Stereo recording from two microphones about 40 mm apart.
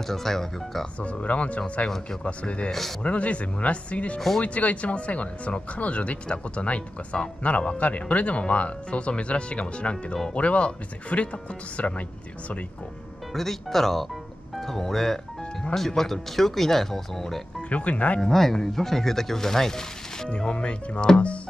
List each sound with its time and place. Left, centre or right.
0.1 s speech: centre
1.0 s speech: left
13.3 s speech: centre
17.6 s speech: left
18.2 s speech: centre
20.2 s speech: left